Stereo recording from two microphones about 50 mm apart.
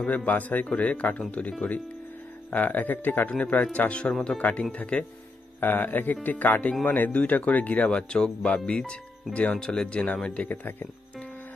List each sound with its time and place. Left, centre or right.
0.0 s speech: left
2.5 s speech: left
5.6 s speech: left
7.9 s speech: centre